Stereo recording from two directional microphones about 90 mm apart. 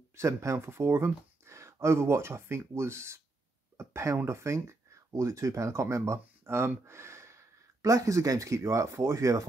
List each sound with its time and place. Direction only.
0.1 s speech: 30° right (ahead or behind)